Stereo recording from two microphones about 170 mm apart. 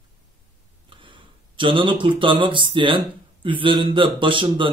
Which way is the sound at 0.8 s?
30° right (ahead or behind).